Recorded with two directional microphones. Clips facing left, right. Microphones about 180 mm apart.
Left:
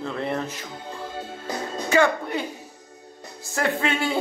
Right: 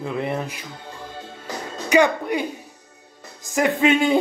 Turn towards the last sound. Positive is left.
turn(degrees=-20)  # may be behind; listen again after turning